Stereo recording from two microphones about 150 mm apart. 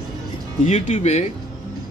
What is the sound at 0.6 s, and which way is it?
Speech, 45° left (ahead or behind).